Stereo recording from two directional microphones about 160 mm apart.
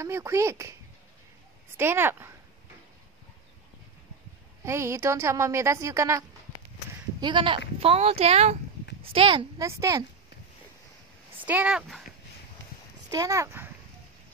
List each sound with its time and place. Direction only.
0.0 s a woman's voice: 20° right (ahead or behind)
1.8 s a woman's voice: 15° right (ahead or behind)
4.6 s a woman's voice: 15° right (ahead or behind)
7.2 s speech: 30° right (ahead or behind)
9.6 s speech: 20° right (ahead or behind)
11.4 s a woman's voice: 10° right (ahead or behind)
13.1 s speech: 20° right (ahead or behind)